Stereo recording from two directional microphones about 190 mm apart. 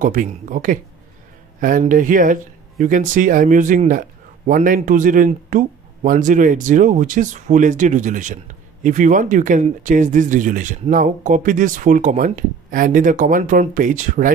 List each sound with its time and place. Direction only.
0.0 s speech: 45° right (ahead or behind)